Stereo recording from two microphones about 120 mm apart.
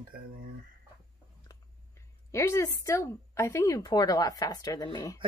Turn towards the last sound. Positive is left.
turn(degrees=30)  # may be behind; listen again after turning